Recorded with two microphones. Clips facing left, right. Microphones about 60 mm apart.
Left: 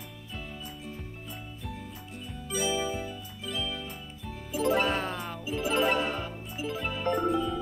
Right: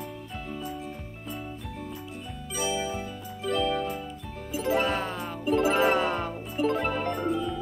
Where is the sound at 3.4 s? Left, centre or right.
Right.